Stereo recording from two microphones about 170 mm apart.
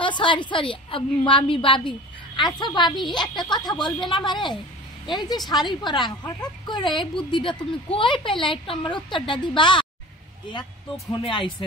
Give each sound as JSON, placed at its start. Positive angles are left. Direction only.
{"t": 0.0, "sound": "speech", "side_deg": 30}
{"t": 11.2, "sound": "speech", "side_deg": 30}